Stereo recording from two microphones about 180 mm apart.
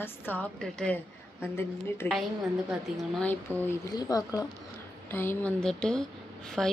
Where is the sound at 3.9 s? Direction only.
20° left (ahead or behind).